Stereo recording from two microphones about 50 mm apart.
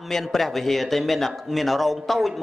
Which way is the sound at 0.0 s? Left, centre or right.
Centre.